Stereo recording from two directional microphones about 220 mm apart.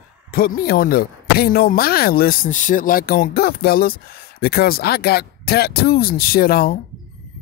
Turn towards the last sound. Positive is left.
turn(degrees=40)  # may be behind; listen again after turning